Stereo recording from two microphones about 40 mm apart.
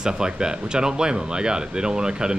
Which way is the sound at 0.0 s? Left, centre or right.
Centre.